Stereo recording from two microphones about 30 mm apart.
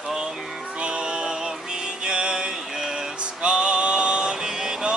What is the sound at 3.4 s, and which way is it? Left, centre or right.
Male singing, right.